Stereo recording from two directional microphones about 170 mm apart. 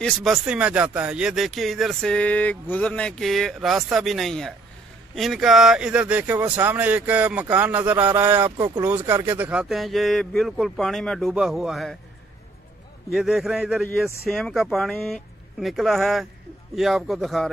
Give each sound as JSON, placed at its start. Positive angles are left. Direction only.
{"t": 0.0, "sound": "speech", "side_deg": 0}
{"t": 8.5, "sound": "speech", "side_deg": -25}
{"t": 8.8, "sound": "speech", "side_deg": -10}
{"t": 13.1, "sound": "speech", "side_deg": 0}